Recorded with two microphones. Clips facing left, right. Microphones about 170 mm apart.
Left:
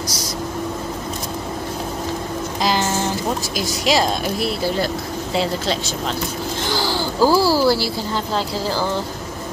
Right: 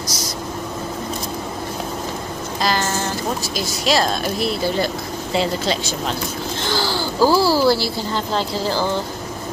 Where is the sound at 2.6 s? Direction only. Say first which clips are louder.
Left 1 dB; 15° left (ahead or behind).